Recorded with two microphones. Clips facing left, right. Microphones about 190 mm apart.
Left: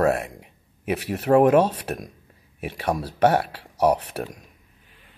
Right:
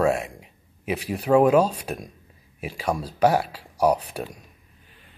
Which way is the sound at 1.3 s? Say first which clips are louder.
Left 1 dB; 35° left (ahead or behind).